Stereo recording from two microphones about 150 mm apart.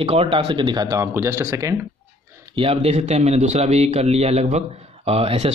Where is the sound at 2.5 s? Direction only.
40° right (ahead or behind).